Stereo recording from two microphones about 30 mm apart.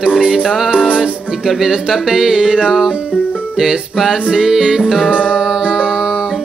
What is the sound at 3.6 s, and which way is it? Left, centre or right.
Music, centre.